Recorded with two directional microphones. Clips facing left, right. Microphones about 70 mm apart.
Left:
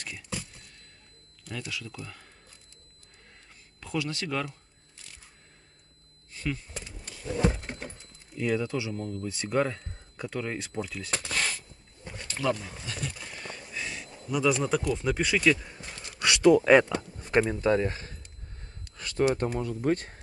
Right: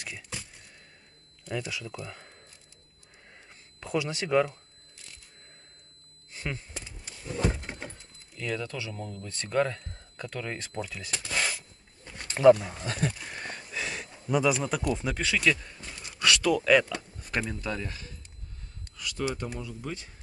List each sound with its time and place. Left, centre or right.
1.5 s speech: centre
3.8 s speech: centre
8.4 s speech: centre
8.9 s speech: centre
11.3 s a sound: centre
12.3 s a sound: right
12.6 s speech: right
13.7 s a sound: right
14.4 s speech: centre
14.8 s speech: centre
15.0 s speech: centre; by 20.2 s left